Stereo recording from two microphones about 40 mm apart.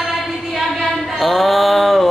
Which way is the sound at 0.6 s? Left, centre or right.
Centre.